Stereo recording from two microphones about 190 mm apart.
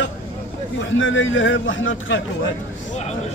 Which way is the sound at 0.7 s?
85° left.